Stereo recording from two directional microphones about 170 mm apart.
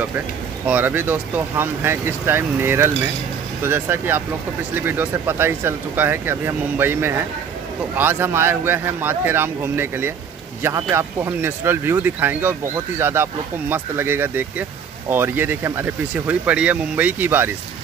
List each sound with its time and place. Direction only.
0.7 s speech: 10° right (ahead or behind)